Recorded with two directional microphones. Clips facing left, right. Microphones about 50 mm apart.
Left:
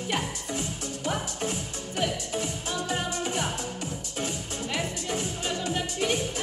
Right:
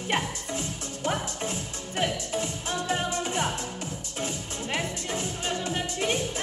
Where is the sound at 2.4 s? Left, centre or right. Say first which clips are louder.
Right 1 dB; right.